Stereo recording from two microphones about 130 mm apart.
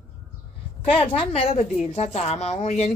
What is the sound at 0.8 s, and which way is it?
A woman's voice, 45° left (ahead or behind).